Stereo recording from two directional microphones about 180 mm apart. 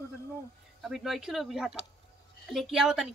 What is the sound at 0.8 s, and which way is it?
A woman's voice, centre (ahead or behind).